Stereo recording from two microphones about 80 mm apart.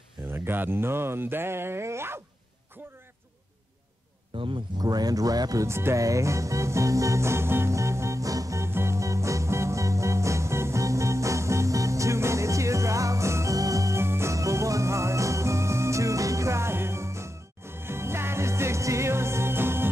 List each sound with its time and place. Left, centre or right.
0.3 s speech: right
4.4 s speech: right
5.7 s music: right